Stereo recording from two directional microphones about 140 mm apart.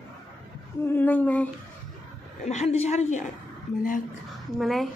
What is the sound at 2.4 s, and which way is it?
Speech, 55° left (ahead or behind).